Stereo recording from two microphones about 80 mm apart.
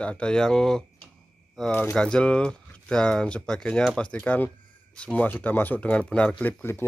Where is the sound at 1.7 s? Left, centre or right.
Left.